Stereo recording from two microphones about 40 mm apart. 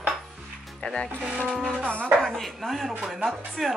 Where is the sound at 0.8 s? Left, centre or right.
Left.